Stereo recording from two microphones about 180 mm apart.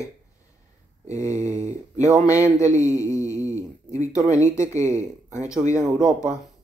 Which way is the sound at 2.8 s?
15° left (ahead or behind).